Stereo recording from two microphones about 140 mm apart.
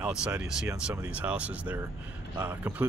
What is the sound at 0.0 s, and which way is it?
Speech, 5° right (ahead or behind).